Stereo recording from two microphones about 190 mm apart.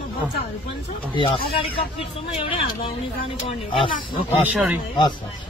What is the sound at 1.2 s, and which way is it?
Speech, 30° left (ahead or behind).